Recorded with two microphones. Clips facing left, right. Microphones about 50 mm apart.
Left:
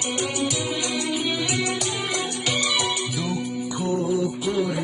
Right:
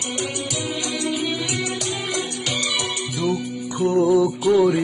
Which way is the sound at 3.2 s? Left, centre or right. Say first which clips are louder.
Right 3 dB; right.